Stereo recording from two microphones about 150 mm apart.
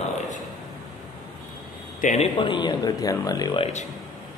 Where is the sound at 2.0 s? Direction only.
50° left (ahead or behind).